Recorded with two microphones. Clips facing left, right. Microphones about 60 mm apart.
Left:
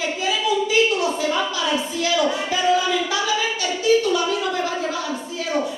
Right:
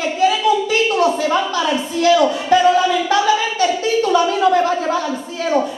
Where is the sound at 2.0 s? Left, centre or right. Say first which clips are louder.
Right 9 dB; right.